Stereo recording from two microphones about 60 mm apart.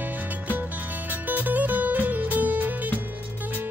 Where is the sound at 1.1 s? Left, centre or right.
Right.